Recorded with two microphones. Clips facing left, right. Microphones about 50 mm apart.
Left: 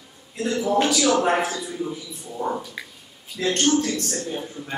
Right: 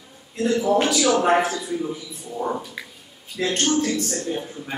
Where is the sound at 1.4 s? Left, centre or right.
Centre.